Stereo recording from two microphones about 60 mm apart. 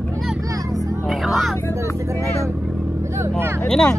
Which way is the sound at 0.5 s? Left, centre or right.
Right.